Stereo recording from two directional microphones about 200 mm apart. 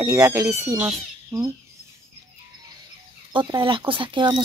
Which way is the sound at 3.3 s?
25° right (ahead or behind).